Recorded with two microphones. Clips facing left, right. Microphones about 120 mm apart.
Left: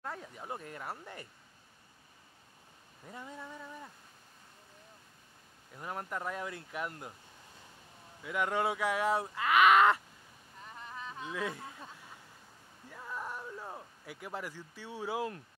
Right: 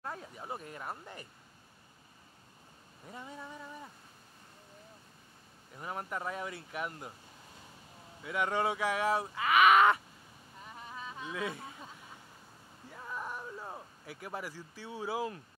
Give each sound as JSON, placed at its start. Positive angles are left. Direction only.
{"t": 0.0, "sound": "a sound", "side_deg": -20}
{"t": 0.4, "sound": "speech", "side_deg": -10}
{"t": 3.1, "sound": "speech", "side_deg": -10}
{"t": 5.8, "sound": "speech", "side_deg": -5}
{"t": 8.2, "sound": "speech", "side_deg": -5}
{"t": 11.3, "sound": "speech", "side_deg": -5}
{"t": 12.9, "sound": "a sound", "side_deg": -5}